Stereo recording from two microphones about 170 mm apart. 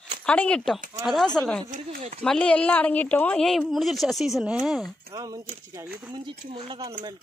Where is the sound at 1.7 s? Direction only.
40° right (ahead or behind).